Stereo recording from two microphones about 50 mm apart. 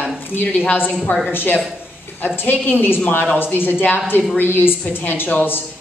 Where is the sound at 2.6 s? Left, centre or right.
Left.